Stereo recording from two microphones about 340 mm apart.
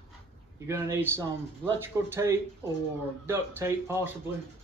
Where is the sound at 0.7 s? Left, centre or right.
Centre.